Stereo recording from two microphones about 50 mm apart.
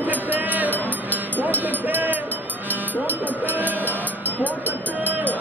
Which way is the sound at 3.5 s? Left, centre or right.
Right.